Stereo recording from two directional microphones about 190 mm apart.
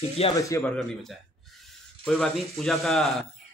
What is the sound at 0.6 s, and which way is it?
Speech, centre (ahead or behind).